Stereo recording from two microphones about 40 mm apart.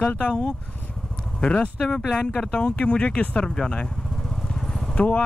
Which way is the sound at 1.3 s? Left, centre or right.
Left.